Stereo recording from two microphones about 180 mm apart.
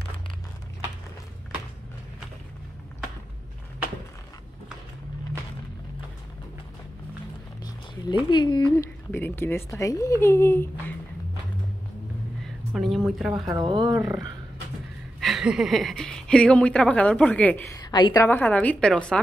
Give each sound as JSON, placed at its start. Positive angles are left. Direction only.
{"t": 7.6, "sound": "speech", "side_deg": 25}
{"t": 12.7, "sound": "speech", "side_deg": 0}
{"t": 13.6, "sound": "speech", "side_deg": -25}
{"t": 15.1, "sound": "speech", "side_deg": 0}
{"t": 18.2, "sound": "a woman's voice", "side_deg": 10}